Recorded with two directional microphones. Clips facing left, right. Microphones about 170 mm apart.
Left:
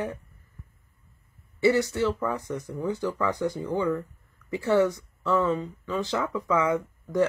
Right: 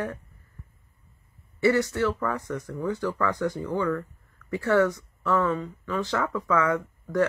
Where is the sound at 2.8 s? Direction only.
25° left (ahead or behind).